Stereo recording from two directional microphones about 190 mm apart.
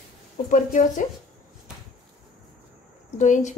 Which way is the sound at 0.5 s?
40° left (ahead or behind).